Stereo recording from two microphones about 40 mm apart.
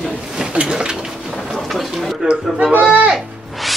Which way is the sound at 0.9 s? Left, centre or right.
Centre.